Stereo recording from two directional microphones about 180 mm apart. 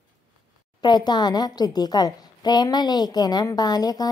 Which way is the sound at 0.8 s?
25° left (ahead or behind).